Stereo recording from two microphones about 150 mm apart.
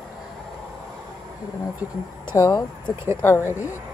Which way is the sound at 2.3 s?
20° left (ahead or behind).